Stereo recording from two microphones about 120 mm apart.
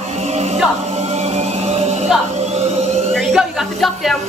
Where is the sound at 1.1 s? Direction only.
60° right (ahead or behind).